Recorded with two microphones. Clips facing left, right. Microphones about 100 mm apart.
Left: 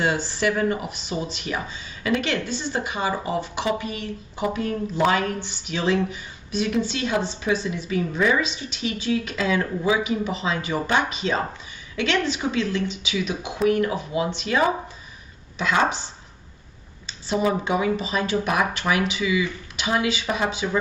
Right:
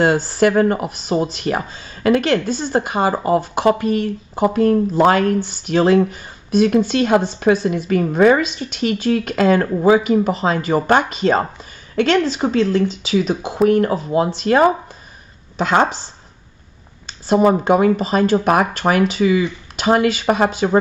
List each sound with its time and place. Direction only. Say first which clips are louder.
0.0 s speech: right 8 dB; 50° right (ahead or behind)
17.0 s speech: right 9 dB; 50° right (ahead or behind)